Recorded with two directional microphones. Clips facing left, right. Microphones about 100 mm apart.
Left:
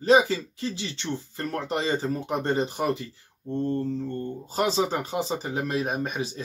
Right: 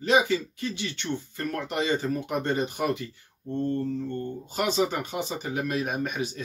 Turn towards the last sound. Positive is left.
turn(degrees=30)  # may be behind; listen again after turning